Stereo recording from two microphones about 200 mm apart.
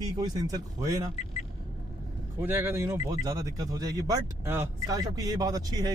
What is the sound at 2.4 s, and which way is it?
A man's voice, 10° right (ahead or behind).